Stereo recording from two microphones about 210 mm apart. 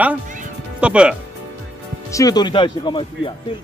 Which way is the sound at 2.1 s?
15° left (ahead or behind).